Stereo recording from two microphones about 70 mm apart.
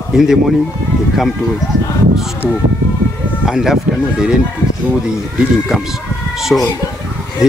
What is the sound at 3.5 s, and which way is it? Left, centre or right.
Speech, centre.